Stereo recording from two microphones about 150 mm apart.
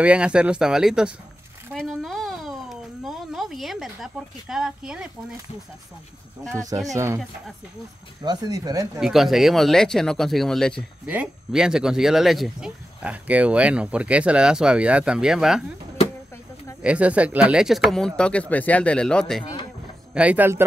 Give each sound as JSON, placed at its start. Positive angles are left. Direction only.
{"t": 0.0, "sound": "speech", "side_deg": -5}
{"t": 1.7, "sound": "a sound", "side_deg": 5}
{"t": 6.5, "sound": "speech", "side_deg": -25}
{"t": 8.2, "sound": "speech", "side_deg": -25}
{"t": 8.9, "sound": "speech", "side_deg": 0}
{"t": 16.8, "sound": "speech", "side_deg": -10}
{"t": 20.2, "sound": "speech", "side_deg": -10}